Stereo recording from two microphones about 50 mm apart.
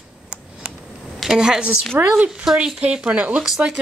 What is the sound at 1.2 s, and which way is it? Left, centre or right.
A woman's voice, centre.